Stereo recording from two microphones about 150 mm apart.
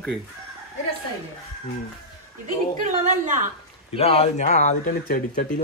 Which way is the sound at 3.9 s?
40° left (ahead or behind).